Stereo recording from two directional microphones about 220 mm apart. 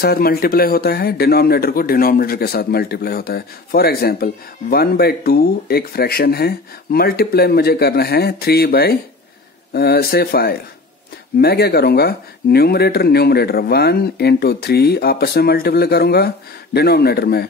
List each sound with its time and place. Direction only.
0.0 s a man's voice: 45° left (ahead or behind)